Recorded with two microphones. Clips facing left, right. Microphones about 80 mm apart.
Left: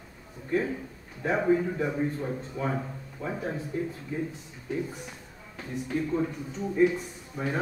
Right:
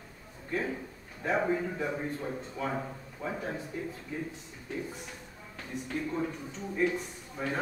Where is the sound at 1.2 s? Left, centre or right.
Centre.